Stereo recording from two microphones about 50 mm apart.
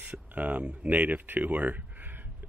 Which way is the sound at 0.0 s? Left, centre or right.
Right.